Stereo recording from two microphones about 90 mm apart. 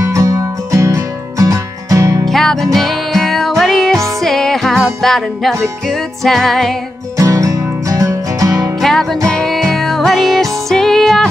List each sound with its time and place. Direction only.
0.0 s music: 35° right (ahead or behind)
2.2 s music: 5° left (ahead or behind)
7.2 s music: 40° right (ahead or behind)
8.8 s music: 5° left (ahead or behind)